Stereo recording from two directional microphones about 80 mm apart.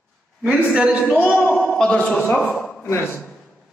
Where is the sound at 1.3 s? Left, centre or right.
Centre.